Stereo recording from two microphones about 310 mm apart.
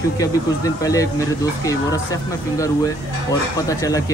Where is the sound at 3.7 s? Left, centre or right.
Centre.